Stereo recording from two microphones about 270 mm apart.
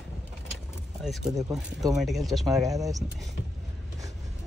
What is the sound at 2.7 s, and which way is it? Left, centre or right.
Speech, centre.